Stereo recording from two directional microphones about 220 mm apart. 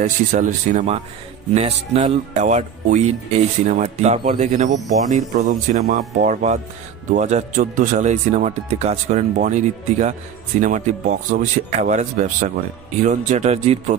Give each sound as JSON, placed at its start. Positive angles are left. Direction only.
{"t": 0.0, "sound": "a man's voice", "side_deg": -35}